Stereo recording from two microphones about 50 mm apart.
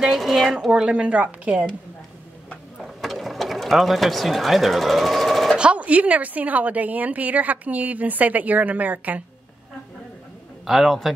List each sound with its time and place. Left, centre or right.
0.0 s speech: centre
0.5 s a woman's voice: centre
2.8 s sewing machine: centre
5.6 s a woman's voice: right
10.7 s speech: centre